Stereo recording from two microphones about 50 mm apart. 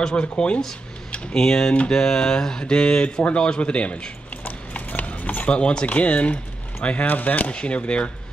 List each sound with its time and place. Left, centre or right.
0.1 s speech: left
1.3 s speech: centre